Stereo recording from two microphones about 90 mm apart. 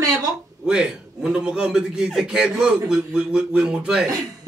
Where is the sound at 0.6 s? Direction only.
10° right (ahead or behind).